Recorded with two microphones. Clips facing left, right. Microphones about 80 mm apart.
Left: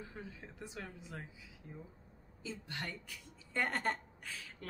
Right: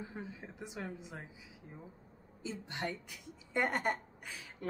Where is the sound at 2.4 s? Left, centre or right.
Right.